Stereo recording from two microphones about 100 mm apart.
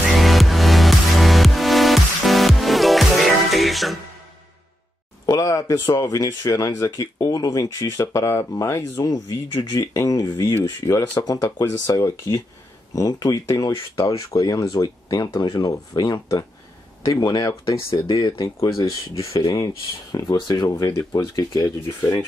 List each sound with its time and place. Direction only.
0.0 s music: centre (ahead or behind)
5.2 s speech: 30° left (ahead or behind)
17.8 s speech: 55° left (ahead or behind)
18.1 s speech: 35° left (ahead or behind)